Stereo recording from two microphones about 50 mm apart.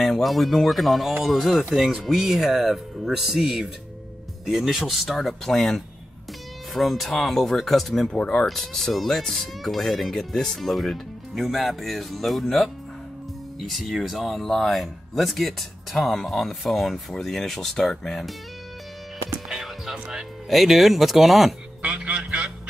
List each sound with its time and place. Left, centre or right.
0.0 s speech: centre
6.7 s speech: centre
8.2 s speech: left
8.5 s speech: centre
19.6 s music: centre
20.4 s speech: centre
21.8 s music: right